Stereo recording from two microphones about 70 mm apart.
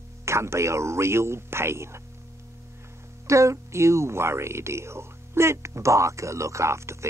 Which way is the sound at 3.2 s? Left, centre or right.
Right.